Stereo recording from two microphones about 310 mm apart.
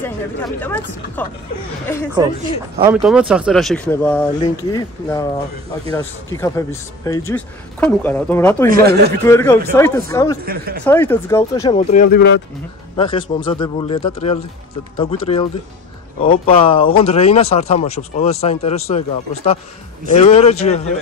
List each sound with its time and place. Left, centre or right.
0.6 s speech: centre
2.2 s a man's voice: centre
8.6 s speech: right
9.2 s a man's voice: centre
10.4 s speech: right
10.9 s a man's voice: centre; by 12.4 s left
12.9 s a man's voice: centre